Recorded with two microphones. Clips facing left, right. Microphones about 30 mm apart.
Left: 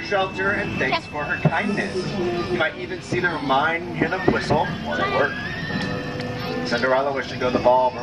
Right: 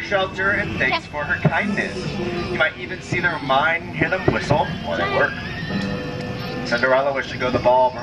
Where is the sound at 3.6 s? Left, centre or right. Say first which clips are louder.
Right 2 dB; right.